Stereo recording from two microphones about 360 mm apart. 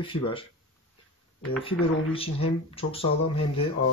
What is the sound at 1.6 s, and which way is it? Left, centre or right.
Speech, centre.